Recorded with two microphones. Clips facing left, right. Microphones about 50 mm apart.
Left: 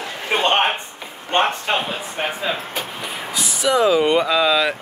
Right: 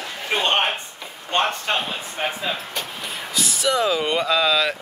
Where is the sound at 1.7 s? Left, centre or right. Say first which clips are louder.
Left 2 dB; centre.